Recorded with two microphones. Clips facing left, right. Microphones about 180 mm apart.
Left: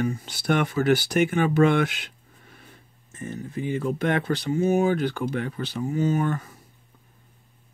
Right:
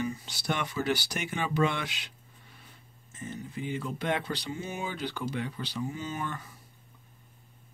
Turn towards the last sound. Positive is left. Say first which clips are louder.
# left 12 dB
turn(degrees=50)  # may be behind; listen again after turning